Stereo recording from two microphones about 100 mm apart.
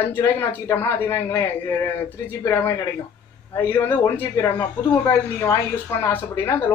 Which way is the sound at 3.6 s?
25° left (ahead or behind).